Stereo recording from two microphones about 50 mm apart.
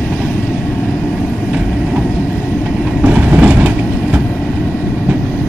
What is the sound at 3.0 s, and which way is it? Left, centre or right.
Vehicle, right.